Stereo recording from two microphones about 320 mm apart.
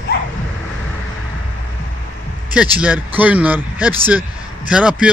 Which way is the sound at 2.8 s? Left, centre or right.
Centre.